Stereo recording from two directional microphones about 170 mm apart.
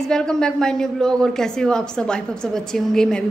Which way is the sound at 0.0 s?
5° left (ahead or behind).